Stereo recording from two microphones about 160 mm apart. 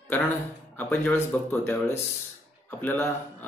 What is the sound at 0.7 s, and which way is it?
Speech, 10° left (ahead or behind).